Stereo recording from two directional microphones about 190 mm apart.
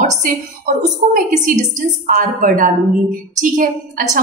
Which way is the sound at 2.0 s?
45° right (ahead or behind).